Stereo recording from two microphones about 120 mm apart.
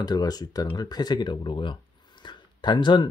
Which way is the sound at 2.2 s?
40° left (ahead or behind).